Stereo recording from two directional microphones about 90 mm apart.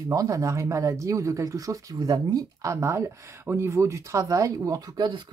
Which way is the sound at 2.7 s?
30° right (ahead or behind).